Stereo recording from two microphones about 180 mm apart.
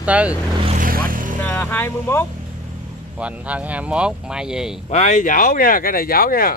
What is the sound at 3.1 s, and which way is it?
Speech, 5° right (ahead or behind).